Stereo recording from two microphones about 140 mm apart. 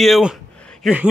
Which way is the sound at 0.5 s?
5° left (ahead or behind).